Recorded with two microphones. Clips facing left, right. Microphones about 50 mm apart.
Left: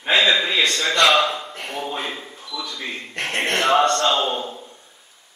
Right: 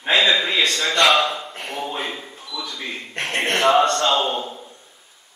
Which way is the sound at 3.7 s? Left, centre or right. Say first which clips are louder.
Right 1 dB; centre.